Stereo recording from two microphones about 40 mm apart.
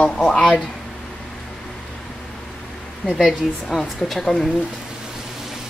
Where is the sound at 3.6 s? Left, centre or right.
Centre.